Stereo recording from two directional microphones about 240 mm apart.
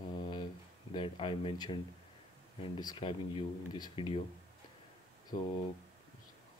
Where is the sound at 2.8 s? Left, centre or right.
Centre.